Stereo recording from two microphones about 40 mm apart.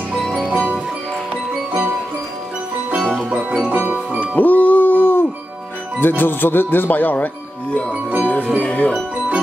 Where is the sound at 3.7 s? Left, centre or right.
Right.